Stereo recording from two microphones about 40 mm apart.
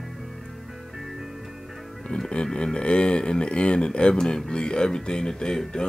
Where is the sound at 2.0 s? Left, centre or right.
Centre.